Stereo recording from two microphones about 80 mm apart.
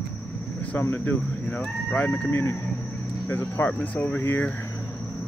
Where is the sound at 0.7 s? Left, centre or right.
Left.